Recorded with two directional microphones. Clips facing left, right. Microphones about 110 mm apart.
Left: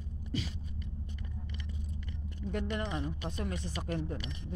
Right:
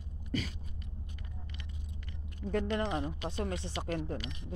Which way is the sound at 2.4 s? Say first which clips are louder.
Right 3 dB; 35° right (ahead or behind).